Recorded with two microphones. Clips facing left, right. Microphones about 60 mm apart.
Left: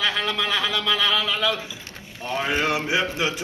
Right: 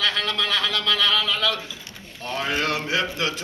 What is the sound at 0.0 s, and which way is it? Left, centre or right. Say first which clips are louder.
A man's voice: even; centre.